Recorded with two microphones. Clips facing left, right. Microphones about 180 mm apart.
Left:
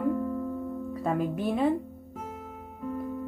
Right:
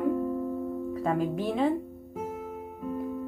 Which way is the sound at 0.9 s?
Centre (ahead or behind).